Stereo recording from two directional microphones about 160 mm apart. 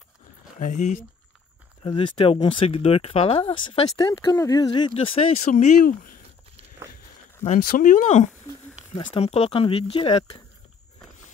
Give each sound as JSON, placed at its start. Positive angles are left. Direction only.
{"t": 0.6, "sound": "speech", "side_deg": 50}
{"t": 1.8, "sound": "speech", "side_deg": 30}
{"t": 7.4, "sound": "speech", "side_deg": 55}
{"t": 8.9, "sound": "speech", "side_deg": 35}